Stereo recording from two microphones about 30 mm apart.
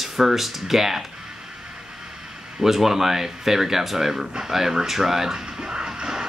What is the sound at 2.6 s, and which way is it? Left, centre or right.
Speech, centre.